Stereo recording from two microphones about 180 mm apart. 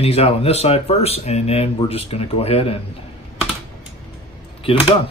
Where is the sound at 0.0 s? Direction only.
35° left (ahead or behind).